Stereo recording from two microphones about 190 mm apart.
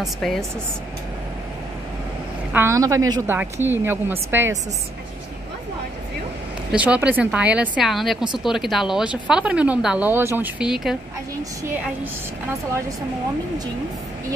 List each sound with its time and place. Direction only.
0.0 s speech: centre (ahead or behind)
2.5 s speech: 15° right (ahead or behind)
6.7 s speech: 5° right (ahead or behind)